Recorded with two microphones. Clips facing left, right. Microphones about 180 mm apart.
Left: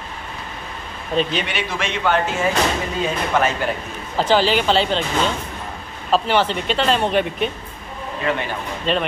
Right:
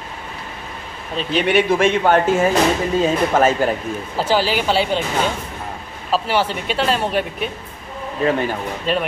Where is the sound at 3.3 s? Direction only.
45° right (ahead or behind).